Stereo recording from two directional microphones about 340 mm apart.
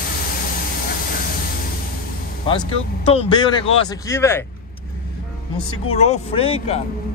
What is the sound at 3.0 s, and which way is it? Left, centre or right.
Speech, centre.